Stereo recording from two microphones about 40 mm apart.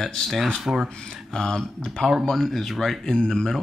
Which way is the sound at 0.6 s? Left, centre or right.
Centre.